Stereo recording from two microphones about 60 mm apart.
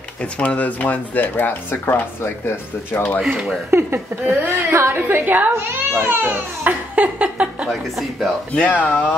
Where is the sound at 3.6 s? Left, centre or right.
Right.